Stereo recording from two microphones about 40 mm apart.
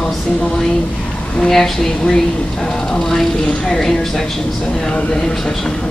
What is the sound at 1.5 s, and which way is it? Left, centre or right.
Speech, centre.